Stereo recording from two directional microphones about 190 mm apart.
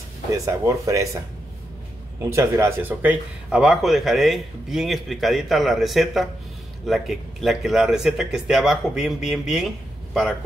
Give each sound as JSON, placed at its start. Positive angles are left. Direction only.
{"t": 0.5, "sound": "speech", "side_deg": -15}
{"t": 2.2, "sound": "speech", "side_deg": -15}